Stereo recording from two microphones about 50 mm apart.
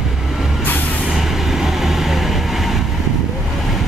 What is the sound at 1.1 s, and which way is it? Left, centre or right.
Vehicle, centre.